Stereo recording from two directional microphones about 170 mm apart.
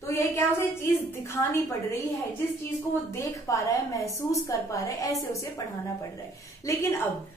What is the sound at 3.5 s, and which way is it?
Speech, 20° left (ahead or behind).